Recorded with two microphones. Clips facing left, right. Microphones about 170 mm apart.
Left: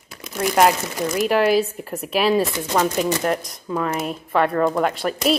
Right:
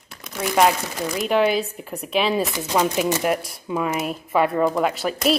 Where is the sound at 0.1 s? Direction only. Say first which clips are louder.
Left 2 dB; 5° left (ahead or behind).